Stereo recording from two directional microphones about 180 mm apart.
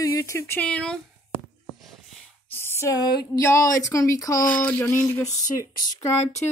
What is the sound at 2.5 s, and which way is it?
Speech, 10° left (ahead or behind).